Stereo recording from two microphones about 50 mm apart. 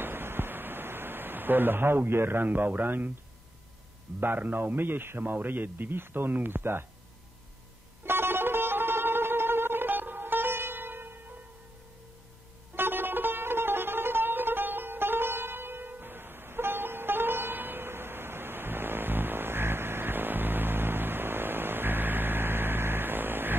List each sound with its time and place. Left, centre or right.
0.0 s a sound: right
4.2 s a man's voice: right
8.0 s music: right
12.7 s music: right